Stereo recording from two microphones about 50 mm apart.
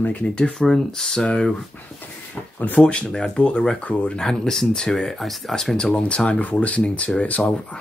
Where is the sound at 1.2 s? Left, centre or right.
Centre.